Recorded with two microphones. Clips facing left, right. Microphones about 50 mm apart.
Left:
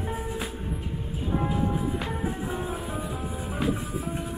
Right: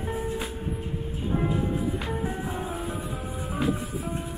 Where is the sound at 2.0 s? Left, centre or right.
Centre.